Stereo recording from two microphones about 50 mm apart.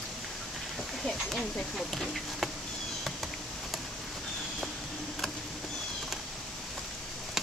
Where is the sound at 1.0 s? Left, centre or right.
Centre.